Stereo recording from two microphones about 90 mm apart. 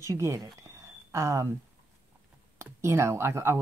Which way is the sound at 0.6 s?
30° right (ahead or behind).